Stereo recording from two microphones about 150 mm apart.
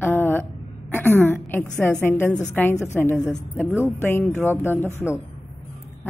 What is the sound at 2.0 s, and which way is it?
A woman's voice, 15° left (ahead or behind).